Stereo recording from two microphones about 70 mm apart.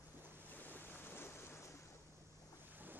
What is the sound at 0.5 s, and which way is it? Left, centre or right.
Waves, left.